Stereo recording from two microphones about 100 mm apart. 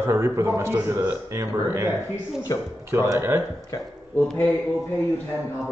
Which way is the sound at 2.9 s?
25° right (ahead or behind).